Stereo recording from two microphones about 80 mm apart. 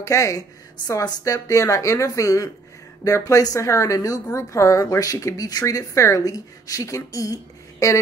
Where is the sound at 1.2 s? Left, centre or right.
Left.